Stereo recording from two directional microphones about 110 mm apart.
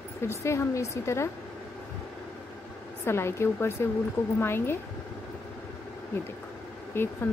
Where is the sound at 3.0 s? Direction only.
25° left (ahead or behind).